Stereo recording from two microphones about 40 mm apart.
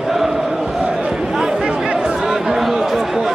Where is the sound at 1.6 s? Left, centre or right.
Right.